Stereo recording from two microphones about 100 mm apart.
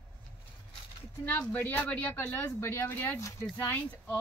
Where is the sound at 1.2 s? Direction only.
15° left (ahead or behind).